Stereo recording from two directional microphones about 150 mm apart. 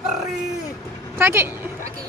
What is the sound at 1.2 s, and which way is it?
Speech, 15° right (ahead or behind).